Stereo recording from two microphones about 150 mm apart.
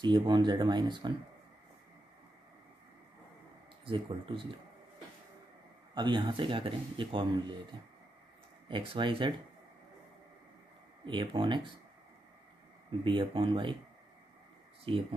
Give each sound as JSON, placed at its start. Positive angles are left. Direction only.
{"t": 0.0, "sound": "speech", "side_deg": -30}
{"t": 3.8, "sound": "speech", "side_deg": -35}
{"t": 5.9, "sound": "speech", "side_deg": -30}
{"t": 11.1, "sound": "speech", "side_deg": -30}
{"t": 13.0, "sound": "speech", "side_deg": -35}
{"t": 14.9, "sound": "speech", "side_deg": -35}